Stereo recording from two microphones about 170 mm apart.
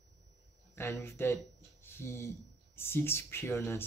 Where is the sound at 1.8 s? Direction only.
15° left (ahead or behind).